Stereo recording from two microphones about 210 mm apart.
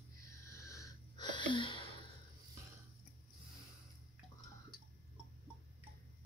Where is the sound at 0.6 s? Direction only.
15° left (ahead or behind).